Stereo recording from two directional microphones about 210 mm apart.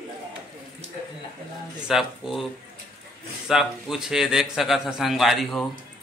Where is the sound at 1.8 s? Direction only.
Centre (ahead or behind).